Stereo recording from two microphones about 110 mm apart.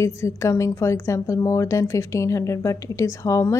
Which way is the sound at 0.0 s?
30° left (ahead or behind).